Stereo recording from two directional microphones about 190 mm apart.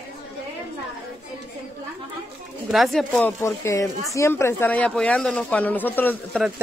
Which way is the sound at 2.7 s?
Centre (ahead or behind).